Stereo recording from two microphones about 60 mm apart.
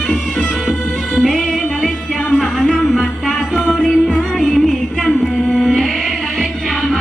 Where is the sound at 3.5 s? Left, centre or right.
Centre.